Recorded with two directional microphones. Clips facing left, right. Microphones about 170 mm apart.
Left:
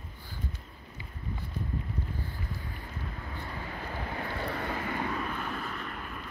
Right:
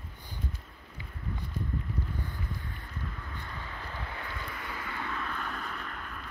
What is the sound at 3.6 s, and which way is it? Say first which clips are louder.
Vehicle: left 4 dB; 35° left (ahead or behind).